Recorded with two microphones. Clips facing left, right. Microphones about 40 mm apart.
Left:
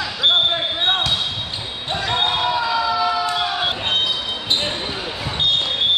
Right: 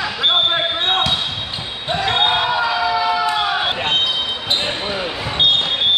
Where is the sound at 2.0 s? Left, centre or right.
Right.